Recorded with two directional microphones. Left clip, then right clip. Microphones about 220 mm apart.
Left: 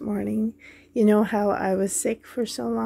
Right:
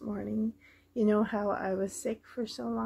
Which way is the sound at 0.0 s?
45° left (ahead or behind).